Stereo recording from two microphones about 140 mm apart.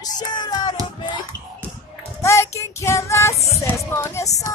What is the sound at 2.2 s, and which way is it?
Child singing, 20° left (ahead or behind).